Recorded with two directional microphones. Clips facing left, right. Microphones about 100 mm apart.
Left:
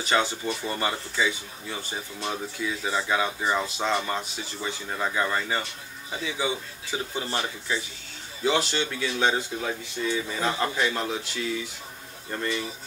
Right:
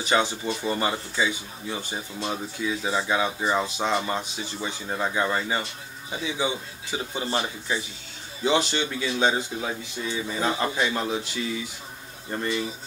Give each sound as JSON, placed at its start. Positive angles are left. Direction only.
{"t": 0.1, "sound": "speech", "side_deg": -20}
{"t": 12.3, "sound": "speech", "side_deg": -15}